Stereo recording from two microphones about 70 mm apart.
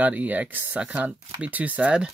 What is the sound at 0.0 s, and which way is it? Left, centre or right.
Speech, right.